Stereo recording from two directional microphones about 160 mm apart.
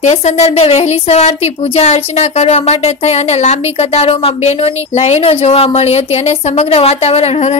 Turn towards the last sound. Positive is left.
turn(degrees=40)  # may be behind; listen again after turning